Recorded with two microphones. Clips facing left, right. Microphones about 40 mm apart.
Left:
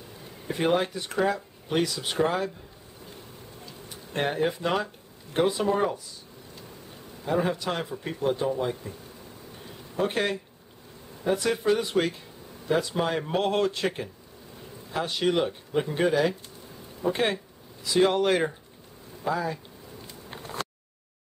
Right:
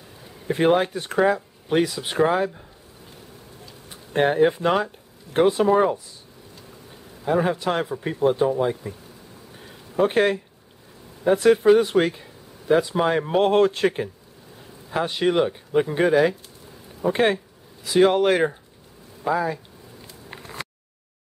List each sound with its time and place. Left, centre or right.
0.5 s speech: right
3.9 s speech: centre
7.2 s speech: centre
9.9 s speech: right
11.5 s speech: centre
13.4 s speech: right